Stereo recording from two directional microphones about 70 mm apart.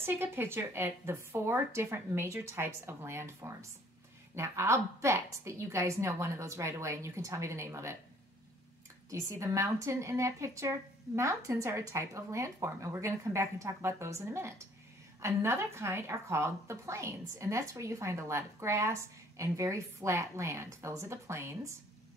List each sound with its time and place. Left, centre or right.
0.0 s a woman's voice: right
9.1 s a woman's voice: right